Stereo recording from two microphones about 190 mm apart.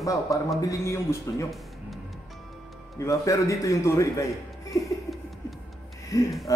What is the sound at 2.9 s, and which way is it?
Speech, 15° left (ahead or behind).